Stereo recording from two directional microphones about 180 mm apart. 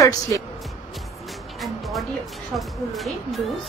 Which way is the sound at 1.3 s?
Centre (ahead or behind).